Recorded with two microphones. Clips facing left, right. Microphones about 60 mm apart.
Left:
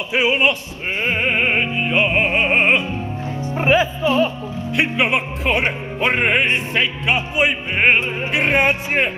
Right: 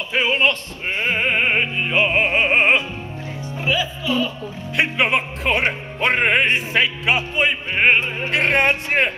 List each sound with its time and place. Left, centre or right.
0.1 s speech: centre
1.0 s music: centre
3.5 s music: left
4.7 s speech: centre
7.3 s opera: centre